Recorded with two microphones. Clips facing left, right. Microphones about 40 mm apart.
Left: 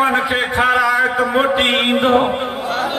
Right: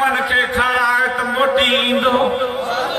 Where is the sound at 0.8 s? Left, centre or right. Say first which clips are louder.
Even; left.